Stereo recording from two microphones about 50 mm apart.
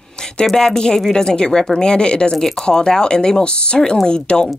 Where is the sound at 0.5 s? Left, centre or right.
Centre.